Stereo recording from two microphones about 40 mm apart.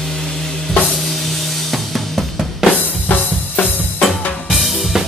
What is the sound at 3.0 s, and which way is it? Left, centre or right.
Drum kit, left.